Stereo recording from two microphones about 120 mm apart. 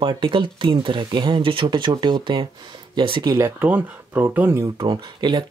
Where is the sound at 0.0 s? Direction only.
45° right (ahead or behind).